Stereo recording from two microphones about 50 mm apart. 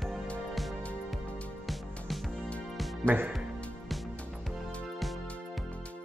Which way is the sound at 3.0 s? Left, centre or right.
Right.